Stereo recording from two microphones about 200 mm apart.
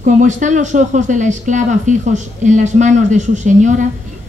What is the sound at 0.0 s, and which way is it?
Speech, 40° right (ahead or behind).